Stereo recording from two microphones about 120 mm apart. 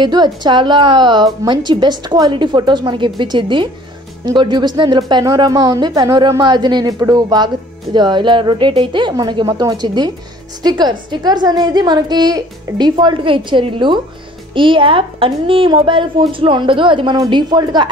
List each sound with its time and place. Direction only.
0.0 s a woman's voice: 40° right (ahead or behind)